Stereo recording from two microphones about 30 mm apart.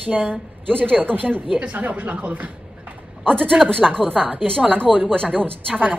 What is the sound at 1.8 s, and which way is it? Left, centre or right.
Speech, right.